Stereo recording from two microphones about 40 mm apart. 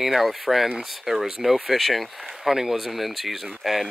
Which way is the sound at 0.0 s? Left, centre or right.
Centre.